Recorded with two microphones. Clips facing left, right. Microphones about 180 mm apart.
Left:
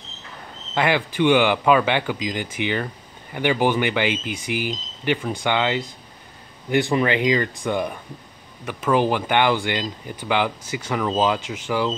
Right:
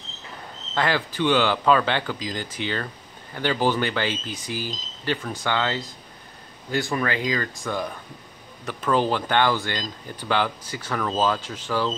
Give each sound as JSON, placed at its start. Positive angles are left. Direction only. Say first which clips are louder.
{"t": 0.7, "sound": "speech", "louder": "left 3 dB", "side_deg": 15}